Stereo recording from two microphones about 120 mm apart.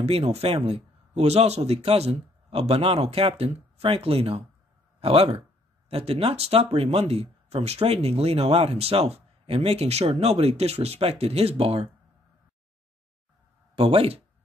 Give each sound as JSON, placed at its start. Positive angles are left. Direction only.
{"t": 0.0, "sound": "speech", "side_deg": -55}
{"t": 13.7, "sound": "speech", "side_deg": -55}